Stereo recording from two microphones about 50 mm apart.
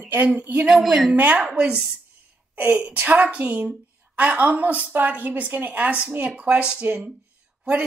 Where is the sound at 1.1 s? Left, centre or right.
Right.